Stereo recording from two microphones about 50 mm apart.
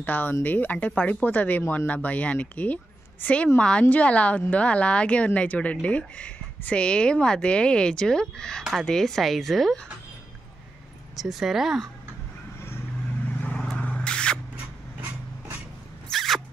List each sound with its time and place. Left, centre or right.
0.0 s a woman's voice: left; by 9.8 s centre
11.1 s speech: centre
13.7 s a sound: left
16.1 s zipper: centre